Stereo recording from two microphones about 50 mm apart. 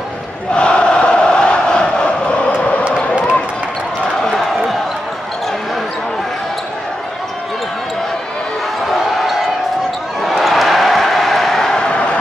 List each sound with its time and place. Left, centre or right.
0.6 s crowd: left
10.2 s a sound: centre
11.9 s crowd: left